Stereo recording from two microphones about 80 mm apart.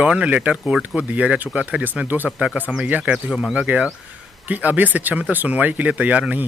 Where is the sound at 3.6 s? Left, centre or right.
Centre.